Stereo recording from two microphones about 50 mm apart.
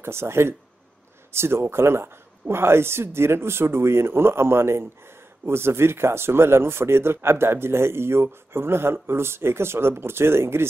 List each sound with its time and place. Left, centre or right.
0.0 s speech: right